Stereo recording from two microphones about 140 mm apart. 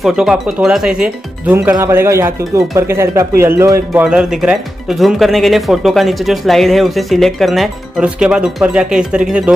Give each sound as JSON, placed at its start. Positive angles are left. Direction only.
{"t": 0.0, "sound": "speech", "side_deg": -5}
{"t": 4.0, "sound": "speech", "side_deg": -5}